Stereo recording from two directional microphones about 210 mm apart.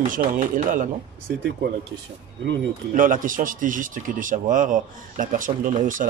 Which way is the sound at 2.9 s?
40° right (ahead or behind).